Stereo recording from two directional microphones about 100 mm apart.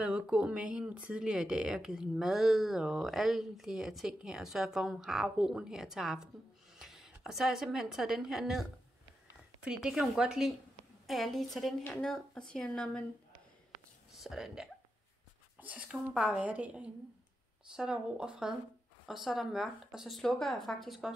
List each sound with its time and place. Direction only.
0.0 s a woman's voice: 10° right (ahead or behind); by 13.0 s 10° left (ahead or behind)
14.2 s speech: 5° right (ahead or behind)
15.6 s a sound: 15° right (ahead or behind)
15.9 s a woman's voice: 5° right (ahead or behind)